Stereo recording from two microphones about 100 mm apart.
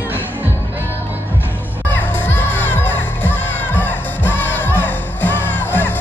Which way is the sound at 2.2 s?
20° left (ahead or behind).